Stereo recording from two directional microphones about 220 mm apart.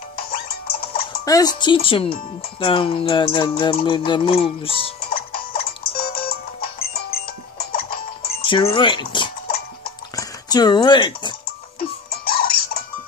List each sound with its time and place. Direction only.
0.1 s music: 45° left (ahead or behind)
1.2 s music: 15° left (ahead or behind)
5.0 s music: 45° left (ahead or behind)
8.5 s music: 20° left (ahead or behind)
10.1 s speech: 20° left (ahead or behind)
12.1 s music: 45° left (ahead or behind)